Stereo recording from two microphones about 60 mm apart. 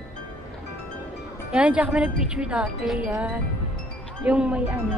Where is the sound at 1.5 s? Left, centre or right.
Centre.